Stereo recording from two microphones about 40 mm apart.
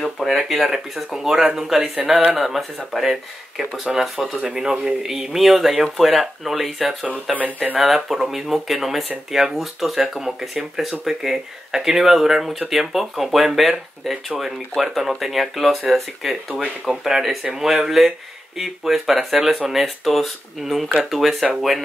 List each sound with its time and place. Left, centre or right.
0.0 s a sound: centre
0.4 s speech: centre
2.3 s speech: centre
7.3 s speech: right
7.8 s speech: centre
16.9 s speech: centre
17.2 s speech: centre
19.7 s speech: centre